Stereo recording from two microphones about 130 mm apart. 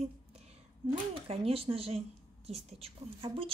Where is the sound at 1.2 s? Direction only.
50° right (ahead or behind).